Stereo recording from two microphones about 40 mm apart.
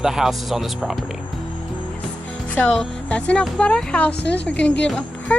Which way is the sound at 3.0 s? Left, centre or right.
Left.